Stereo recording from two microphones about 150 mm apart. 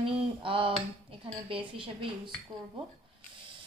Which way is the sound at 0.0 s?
35° right (ahead or behind).